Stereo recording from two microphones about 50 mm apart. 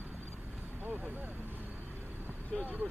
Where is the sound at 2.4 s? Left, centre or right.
Left.